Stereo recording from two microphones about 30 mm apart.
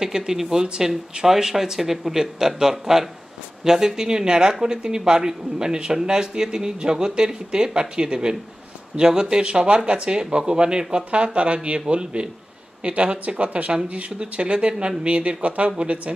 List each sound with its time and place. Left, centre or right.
0.0 s a man's voice: centre
11.3 s speech: right
14.7 s speech: right
15.0 s speech: right